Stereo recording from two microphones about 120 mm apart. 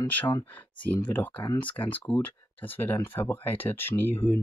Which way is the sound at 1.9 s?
15° left (ahead or behind).